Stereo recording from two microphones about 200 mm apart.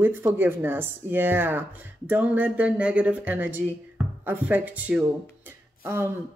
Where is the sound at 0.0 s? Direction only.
10° right (ahead or behind).